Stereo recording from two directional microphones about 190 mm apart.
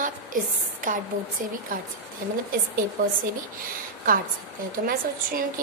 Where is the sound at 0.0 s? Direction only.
45° right (ahead or behind).